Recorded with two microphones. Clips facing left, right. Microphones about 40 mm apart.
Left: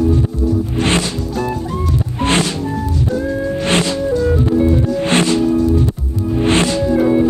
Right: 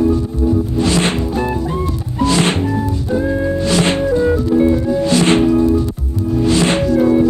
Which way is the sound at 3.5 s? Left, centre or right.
Left.